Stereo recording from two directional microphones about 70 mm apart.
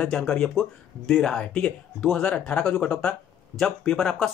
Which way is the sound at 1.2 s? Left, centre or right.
Centre.